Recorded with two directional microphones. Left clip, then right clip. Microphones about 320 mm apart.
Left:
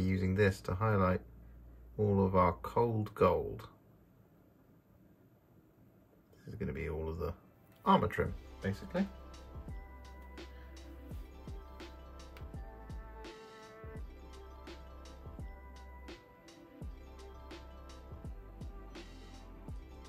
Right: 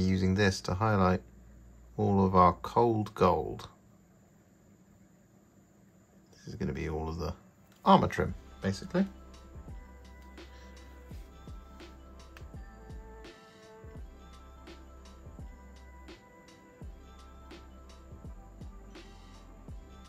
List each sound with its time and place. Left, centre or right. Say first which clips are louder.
0.1 s speech: right 2 dB; centre
6.6 s speech: right 4 dB; centre
9.0 s music: right 4 dB; centre